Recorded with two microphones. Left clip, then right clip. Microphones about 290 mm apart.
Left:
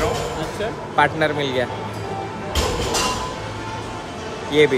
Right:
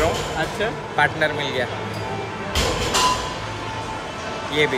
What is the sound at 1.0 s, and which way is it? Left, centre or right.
Speech, centre.